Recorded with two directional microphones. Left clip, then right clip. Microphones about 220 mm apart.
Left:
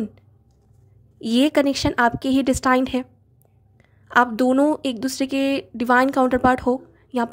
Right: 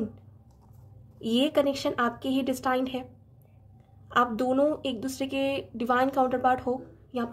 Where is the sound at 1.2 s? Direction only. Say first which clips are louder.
Left 6 dB; 45° left (ahead or behind).